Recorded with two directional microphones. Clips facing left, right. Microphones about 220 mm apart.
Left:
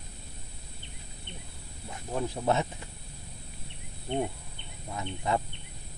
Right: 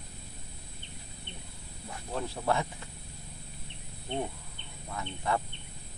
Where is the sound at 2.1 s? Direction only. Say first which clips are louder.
Left 3 dB; 20° left (ahead or behind).